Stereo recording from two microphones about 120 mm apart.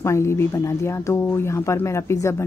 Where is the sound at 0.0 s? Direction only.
25° left (ahead or behind).